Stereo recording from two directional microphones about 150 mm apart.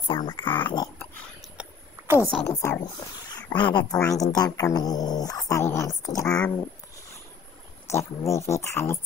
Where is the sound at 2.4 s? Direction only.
20° left (ahead or behind).